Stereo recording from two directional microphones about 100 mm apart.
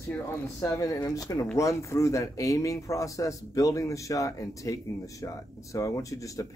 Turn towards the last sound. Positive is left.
turn(degrees=35)  # may be behind; listen again after turning